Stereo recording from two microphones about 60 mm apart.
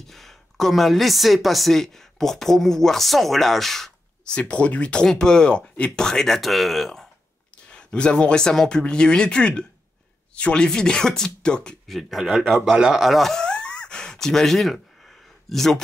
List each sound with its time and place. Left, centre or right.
0.0 s a woman's voice: centre
4.2 s a woman's voice: centre
7.7 s speech: centre
11.9 s a woman's voice: centre
13.3 s gasp: centre